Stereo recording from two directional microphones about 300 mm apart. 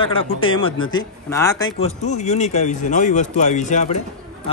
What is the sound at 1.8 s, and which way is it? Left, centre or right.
Speech, left.